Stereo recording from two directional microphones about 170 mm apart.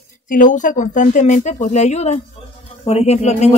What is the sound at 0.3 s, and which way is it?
Speech, 50° left (ahead or behind).